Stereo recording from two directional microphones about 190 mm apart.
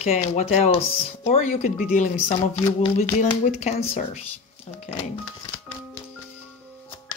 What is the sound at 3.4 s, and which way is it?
Speech, 35° left (ahead or behind).